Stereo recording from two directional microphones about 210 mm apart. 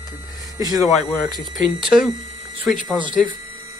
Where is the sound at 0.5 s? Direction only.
15° right (ahead or behind).